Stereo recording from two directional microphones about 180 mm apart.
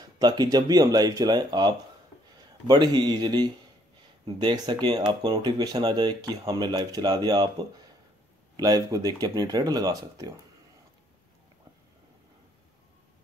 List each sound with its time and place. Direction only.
0.2 s speech: 20° right (ahead or behind)